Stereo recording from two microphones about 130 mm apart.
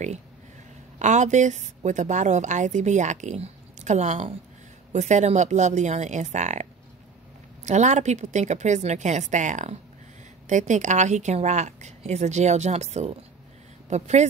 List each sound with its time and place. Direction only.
0.9 s a woman's voice: 65° right (ahead or behind)